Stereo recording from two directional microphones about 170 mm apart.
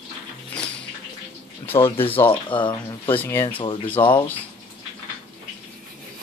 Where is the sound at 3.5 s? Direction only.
30° left (ahead or behind).